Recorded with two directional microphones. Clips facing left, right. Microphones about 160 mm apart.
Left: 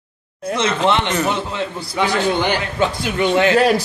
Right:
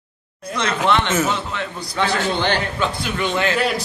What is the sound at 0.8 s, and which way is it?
A man's voice, 20° left (ahead or behind).